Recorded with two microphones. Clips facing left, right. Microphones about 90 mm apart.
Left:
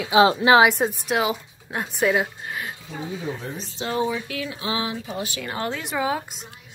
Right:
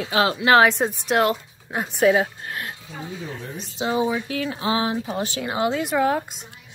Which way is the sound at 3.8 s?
15° right (ahead or behind).